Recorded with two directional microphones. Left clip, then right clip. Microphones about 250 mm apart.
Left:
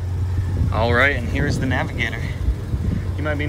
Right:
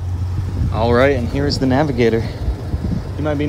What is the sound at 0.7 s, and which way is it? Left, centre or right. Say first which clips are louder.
Speech: right 3 dB; centre.